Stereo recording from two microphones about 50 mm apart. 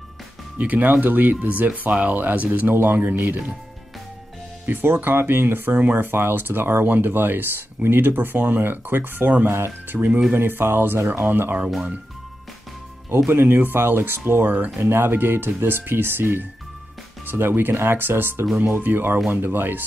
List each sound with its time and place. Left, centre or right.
0.6 s speech: right
4.9 s speech: right
13.3 s speech: right